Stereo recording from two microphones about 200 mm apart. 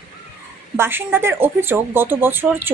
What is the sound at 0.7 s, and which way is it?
Speech, 10° right (ahead or behind).